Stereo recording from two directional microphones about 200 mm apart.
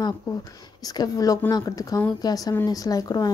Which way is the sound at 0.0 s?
20° left (ahead or behind).